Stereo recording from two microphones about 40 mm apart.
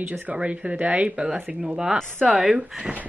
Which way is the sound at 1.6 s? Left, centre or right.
Centre.